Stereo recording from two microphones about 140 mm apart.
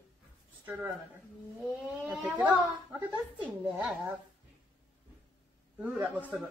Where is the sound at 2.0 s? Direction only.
5° right (ahead or behind).